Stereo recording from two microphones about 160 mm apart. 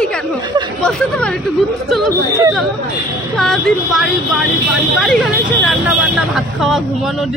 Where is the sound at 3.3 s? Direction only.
Centre (ahead or behind).